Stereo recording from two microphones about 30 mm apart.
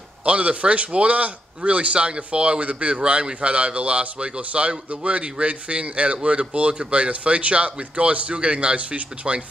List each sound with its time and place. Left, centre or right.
0.2 s speech: right
3.0 s speech: right